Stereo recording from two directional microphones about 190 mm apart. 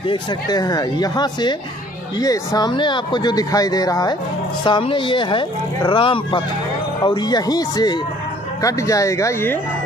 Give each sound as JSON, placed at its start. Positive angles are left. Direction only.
{"t": 0.1, "sound": "speech", "side_deg": 20}